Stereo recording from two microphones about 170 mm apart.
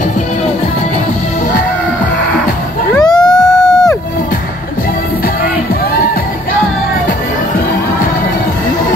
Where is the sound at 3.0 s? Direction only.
25° left (ahead or behind).